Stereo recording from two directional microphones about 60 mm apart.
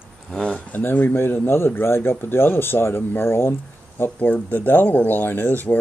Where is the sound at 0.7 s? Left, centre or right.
Left.